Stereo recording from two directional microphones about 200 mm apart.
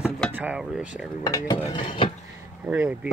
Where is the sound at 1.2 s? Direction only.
20° left (ahead or behind).